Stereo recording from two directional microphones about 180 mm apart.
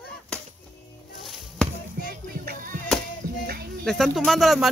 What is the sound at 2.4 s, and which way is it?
Music, 50° right (ahead or behind).